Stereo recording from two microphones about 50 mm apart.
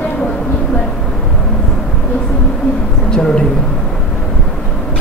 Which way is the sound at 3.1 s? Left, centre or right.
Centre.